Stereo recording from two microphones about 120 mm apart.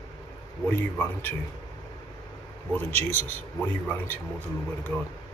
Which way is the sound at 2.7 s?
15° left (ahead or behind).